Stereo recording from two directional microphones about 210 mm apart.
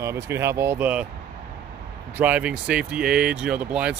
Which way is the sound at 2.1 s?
5° right (ahead or behind).